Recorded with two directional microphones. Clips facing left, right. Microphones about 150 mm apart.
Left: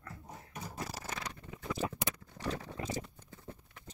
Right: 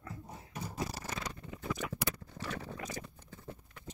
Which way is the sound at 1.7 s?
30° left (ahead or behind).